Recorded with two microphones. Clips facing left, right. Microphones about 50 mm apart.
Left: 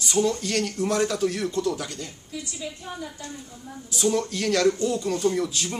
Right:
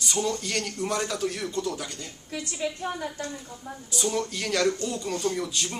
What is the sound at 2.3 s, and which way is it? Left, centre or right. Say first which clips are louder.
A woman's voice: right 5 dB; right.